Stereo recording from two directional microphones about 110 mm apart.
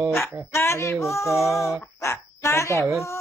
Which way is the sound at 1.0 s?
25° left (ahead or behind).